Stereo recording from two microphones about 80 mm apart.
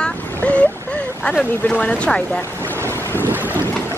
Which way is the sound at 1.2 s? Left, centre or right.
Centre.